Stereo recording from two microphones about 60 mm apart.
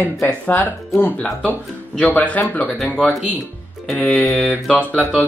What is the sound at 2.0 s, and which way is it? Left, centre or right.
Speech, left.